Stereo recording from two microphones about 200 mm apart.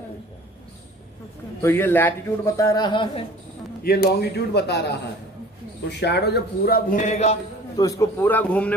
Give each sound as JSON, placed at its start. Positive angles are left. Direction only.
{"t": 1.6, "sound": "a man's voice", "side_deg": 10}
{"t": 3.8, "sound": "a man's voice", "side_deg": 50}
{"t": 7.7, "sound": "a man's voice", "side_deg": 15}